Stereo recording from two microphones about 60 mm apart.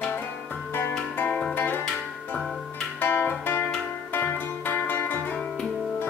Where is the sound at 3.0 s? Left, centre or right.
Left.